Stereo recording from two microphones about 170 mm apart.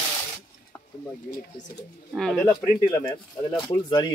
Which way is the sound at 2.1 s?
5° left (ahead or behind).